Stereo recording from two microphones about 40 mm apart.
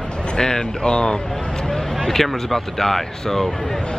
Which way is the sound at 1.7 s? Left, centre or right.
Centre.